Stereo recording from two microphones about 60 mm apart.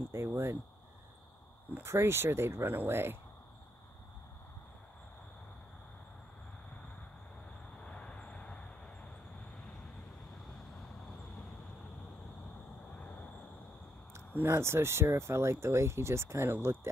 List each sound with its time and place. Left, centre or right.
0.3 s cricket: right
1.8 s speech: right
7.8 s vehicle: centre
12.9 s vehicle: left
14.3 s speech: right